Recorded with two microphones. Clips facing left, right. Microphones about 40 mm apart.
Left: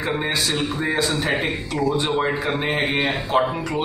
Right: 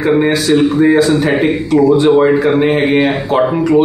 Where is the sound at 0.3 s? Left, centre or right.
Centre.